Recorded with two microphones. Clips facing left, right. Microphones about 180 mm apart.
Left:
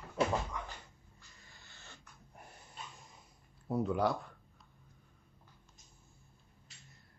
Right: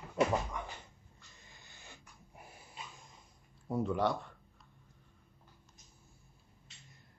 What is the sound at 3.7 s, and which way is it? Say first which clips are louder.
Speech: even; centre (ahead or behind).